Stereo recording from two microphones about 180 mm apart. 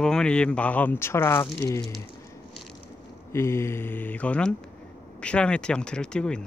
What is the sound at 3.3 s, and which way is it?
Speech, 15° left (ahead or behind).